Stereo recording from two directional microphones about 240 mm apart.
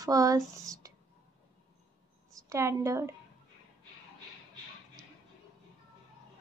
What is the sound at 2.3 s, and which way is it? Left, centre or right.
Speech, centre.